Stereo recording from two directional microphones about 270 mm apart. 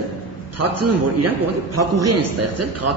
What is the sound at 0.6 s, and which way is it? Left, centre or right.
A man's voice, right.